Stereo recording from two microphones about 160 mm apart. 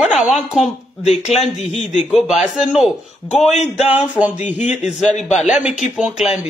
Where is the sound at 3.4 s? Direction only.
45° left (ahead or behind).